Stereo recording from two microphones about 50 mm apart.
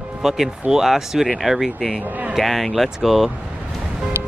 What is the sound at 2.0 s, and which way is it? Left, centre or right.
Speech, right.